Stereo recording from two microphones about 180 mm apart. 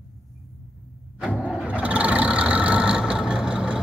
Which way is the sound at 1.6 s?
5° right (ahead or behind).